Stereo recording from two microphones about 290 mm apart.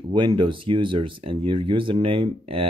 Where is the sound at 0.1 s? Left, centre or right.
Centre.